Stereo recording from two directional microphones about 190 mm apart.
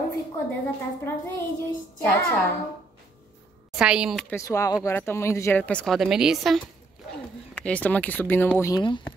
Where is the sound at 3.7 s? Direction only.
5° right (ahead or behind).